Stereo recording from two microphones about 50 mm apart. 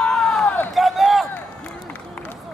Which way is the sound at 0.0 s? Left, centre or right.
Centre.